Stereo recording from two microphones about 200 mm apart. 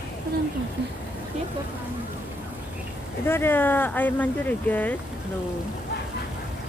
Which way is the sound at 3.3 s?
10° left (ahead or behind).